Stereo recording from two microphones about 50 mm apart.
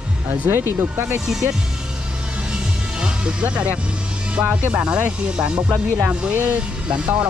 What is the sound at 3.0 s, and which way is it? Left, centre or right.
Speech, right.